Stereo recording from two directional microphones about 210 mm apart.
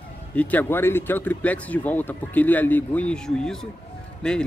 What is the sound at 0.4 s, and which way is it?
Speech, 10° left (ahead or behind).